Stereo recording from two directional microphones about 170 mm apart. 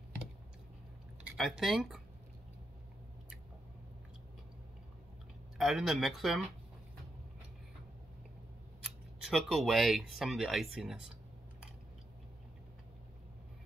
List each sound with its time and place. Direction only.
1.3 s speech: centre (ahead or behind)
5.6 s speech: centre (ahead or behind)
8.8 s speech: centre (ahead or behind)